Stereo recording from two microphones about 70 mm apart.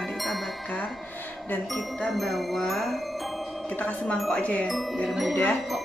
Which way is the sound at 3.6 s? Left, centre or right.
Centre.